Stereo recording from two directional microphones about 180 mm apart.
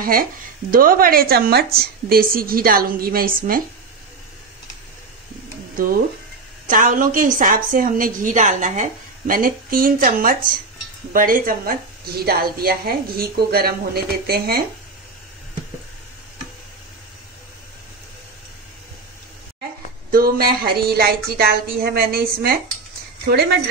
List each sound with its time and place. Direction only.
0.0 s speech: 55° right (ahead or behind)
6.7 s a woman's voice: 50° right (ahead or behind)
20.1 s speech: 55° right (ahead or behind)